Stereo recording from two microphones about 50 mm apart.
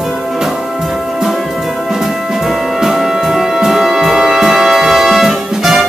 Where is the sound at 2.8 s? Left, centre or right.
Centre.